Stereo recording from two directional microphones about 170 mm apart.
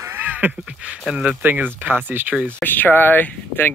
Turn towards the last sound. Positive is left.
turn(degrees=10)  # may be behind; listen again after turning